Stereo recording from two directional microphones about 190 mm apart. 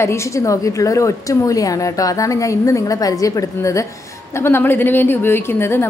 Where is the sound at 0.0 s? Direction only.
15° left (ahead or behind).